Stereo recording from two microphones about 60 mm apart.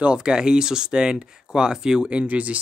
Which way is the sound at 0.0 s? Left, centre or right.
Centre.